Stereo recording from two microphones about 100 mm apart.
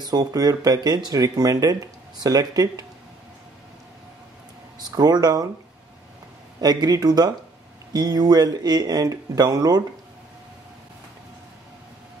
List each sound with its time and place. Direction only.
0.0 s speech: 40° right (ahead or behind)
4.9 s speech: 40° right (ahead or behind)
6.6 s a man's voice: 40° right (ahead or behind)